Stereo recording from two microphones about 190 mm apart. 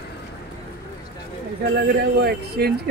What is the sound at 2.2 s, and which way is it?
Speech, 55° right (ahead or behind).